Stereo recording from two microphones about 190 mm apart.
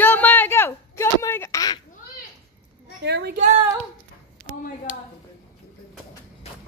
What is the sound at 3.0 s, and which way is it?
Speech, 65° right (ahead or behind).